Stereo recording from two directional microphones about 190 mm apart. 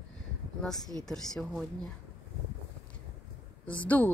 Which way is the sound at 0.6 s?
Centre (ahead or behind).